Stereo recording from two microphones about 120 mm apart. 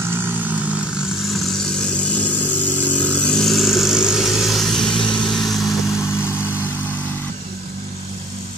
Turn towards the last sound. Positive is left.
turn(degrees=15)  # may be behind; listen again after turning